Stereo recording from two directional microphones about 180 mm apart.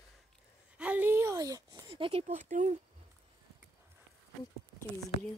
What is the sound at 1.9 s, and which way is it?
Speech, 30° right (ahead or behind).